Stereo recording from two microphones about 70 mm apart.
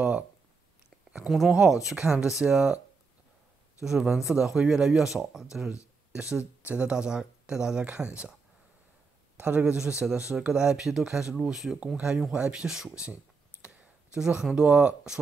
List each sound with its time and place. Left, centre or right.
1.5 s speech: centre
3.8 s speech: centre
9.4 s a man's voice: centre